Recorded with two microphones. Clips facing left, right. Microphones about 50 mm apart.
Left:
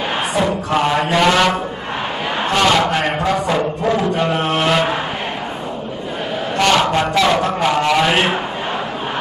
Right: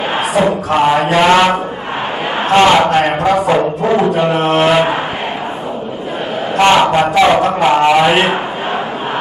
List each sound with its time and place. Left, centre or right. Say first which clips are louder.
0.7 s music: right 5 dB; centre
1.1 s a man's voice: right 3 dB; centre
3.4 s music: right 5 dB; centre
6.6 s a man's voice: right 5 dB; right